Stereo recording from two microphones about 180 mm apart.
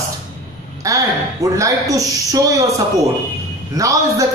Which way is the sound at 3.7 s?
20° right (ahead or behind).